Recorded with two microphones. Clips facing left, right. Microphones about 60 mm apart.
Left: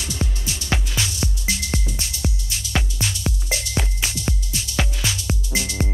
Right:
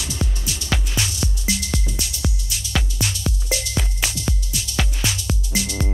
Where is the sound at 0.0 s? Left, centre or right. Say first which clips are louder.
Even; left.